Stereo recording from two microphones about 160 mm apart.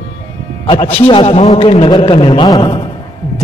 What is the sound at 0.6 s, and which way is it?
A man's voice, 30° left (ahead or behind).